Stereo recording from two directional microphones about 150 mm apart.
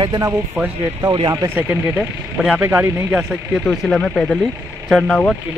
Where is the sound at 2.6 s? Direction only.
15° right (ahead or behind).